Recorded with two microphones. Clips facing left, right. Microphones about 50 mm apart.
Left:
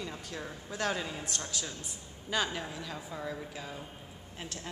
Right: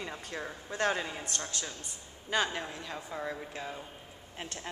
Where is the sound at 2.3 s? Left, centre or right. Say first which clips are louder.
Right 2 dB; centre.